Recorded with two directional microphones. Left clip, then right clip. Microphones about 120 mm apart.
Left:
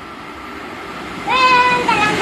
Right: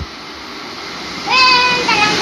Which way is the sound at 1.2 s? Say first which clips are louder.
Right 1 dB; centre (ahead or behind).